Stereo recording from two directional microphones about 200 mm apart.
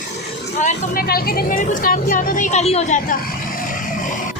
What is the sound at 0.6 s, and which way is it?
Speech, 50° left (ahead or behind).